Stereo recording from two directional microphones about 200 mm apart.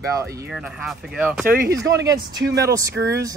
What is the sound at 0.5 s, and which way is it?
Speech, 5° right (ahead or behind).